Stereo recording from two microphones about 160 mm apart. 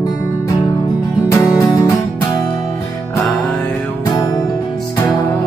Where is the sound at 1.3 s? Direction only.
20° left (ahead or behind).